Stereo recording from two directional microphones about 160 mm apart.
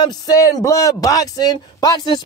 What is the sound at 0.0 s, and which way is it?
Speech, 25° left (ahead or behind).